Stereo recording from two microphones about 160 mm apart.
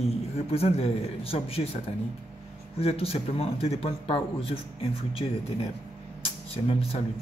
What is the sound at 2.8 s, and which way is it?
Speech, 35° left (ahead or behind).